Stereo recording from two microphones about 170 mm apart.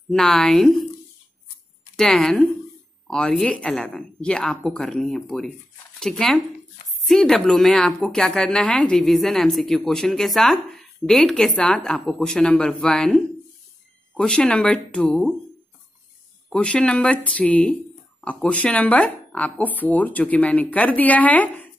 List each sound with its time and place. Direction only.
0.1 s speech: 5° left (ahead or behind)
2.0 s speech: centre (ahead or behind)
16.4 s speech: 5° left (ahead or behind)